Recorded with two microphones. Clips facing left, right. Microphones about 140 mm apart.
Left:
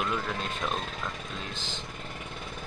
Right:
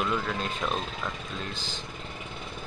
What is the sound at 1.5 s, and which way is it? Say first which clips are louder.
Speech: even; 20° left (ahead or behind).